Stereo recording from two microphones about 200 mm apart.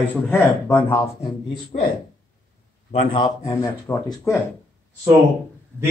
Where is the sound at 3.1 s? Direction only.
20° left (ahead or behind).